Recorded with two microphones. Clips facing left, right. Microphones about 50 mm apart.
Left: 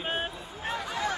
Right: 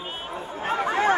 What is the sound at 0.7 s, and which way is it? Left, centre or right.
Speech, right.